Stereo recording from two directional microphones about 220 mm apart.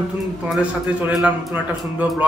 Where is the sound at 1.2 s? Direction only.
5° right (ahead or behind).